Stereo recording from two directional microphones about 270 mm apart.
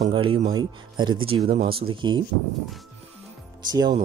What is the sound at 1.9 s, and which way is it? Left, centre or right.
Speech, centre.